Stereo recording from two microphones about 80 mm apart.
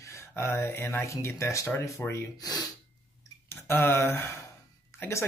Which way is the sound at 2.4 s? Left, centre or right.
Left.